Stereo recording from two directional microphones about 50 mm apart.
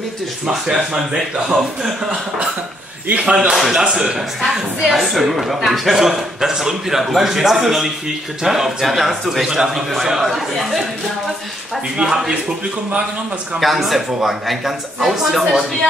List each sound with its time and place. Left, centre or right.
0.5 s speech: centre
3.1 s speech: right
3.3 s a man's voice: centre
12.0 s speech: centre
13.6 s a man's voice: centre